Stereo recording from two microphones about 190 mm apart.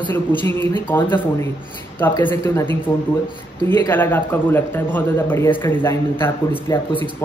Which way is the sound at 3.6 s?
10° left (ahead or behind).